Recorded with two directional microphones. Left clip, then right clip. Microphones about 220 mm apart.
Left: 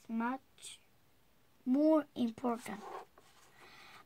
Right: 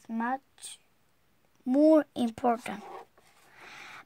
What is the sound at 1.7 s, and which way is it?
Speech, 45° right (ahead or behind).